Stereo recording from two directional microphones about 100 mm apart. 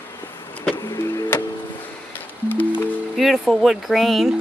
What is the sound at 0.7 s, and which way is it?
Music, 35° left (ahead or behind).